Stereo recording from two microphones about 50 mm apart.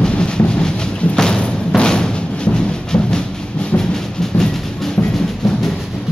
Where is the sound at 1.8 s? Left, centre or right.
Centre.